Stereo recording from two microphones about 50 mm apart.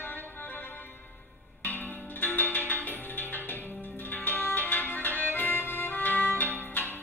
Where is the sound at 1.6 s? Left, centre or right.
Left.